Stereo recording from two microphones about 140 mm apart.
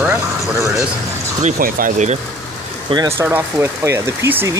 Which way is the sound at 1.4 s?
70° right (ahead or behind).